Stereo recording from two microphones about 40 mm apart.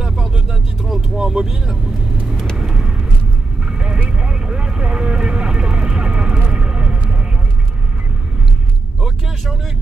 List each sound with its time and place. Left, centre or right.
0.9 s speech: centre
2.6 s vehicle: right
6.5 s a sound: right